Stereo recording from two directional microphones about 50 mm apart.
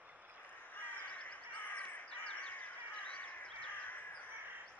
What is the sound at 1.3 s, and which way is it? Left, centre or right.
Crow, left.